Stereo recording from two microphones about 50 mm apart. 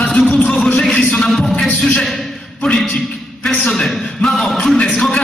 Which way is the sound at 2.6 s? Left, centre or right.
Centre.